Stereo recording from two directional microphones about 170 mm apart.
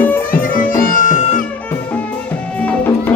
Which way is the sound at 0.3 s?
55° left (ahead or behind).